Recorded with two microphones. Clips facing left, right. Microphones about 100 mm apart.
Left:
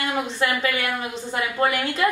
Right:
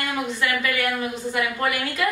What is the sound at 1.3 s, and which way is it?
Speech, 30° left (ahead or behind).